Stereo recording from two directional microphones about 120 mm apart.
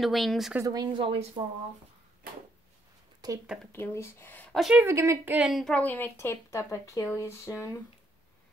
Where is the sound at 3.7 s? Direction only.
20° left (ahead or behind).